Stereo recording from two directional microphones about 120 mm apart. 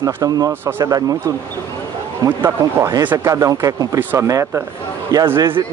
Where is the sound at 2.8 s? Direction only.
30° right (ahead or behind).